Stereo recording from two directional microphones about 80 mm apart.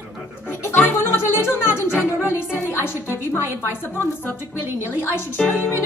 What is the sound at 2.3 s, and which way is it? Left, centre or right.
A woman's voice, left.